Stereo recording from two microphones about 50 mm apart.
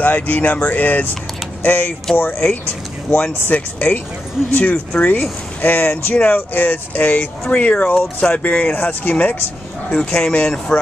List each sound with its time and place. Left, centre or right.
0.0 s speech: left